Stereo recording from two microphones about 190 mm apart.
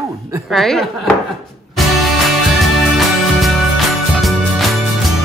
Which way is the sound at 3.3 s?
Centre (ahead or behind).